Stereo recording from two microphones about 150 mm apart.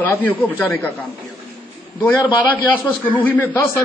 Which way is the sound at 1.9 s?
10° left (ahead or behind).